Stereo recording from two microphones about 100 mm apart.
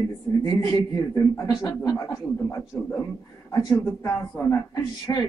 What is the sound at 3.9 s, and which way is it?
A man's voice, 30° left (ahead or behind).